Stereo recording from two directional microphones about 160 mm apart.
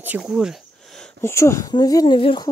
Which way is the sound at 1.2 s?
20° left (ahead or behind).